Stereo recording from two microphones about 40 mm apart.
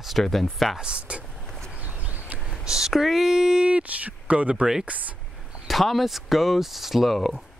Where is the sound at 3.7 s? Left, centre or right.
Right.